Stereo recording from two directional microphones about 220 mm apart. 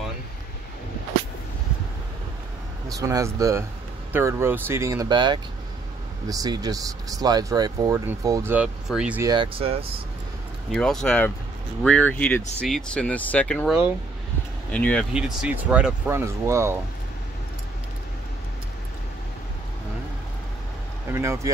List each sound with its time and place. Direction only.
2.9 s speech: 15° right (ahead or behind)
9.3 s speech: 25° right (ahead or behind)
10.7 s speech: centre (ahead or behind)
15.1 s speech: 5° right (ahead or behind)
21.1 s speech: 10° right (ahead or behind)